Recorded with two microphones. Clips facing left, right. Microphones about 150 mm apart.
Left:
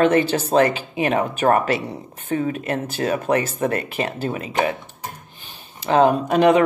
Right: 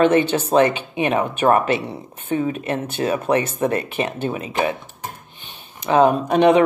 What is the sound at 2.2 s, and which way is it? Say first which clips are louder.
Speech: right 1 dB; 30° right (ahead or behind).